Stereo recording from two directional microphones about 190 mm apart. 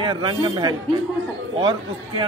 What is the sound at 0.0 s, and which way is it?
Speech, 25° right (ahead or behind).